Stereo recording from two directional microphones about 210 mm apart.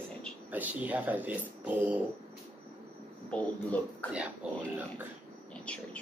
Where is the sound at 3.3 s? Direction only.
5° left (ahead or behind).